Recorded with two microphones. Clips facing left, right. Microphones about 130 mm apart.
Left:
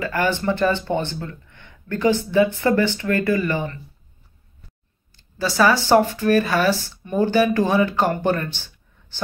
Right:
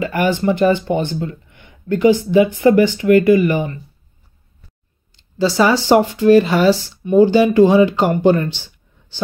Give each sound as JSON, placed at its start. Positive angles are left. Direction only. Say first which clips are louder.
{"t": 0.0, "sound": "speech", "louder": "right 5 dB", "side_deg": -15}
{"t": 5.1, "sound": "speech", "louder": "right 7 dB", "side_deg": -20}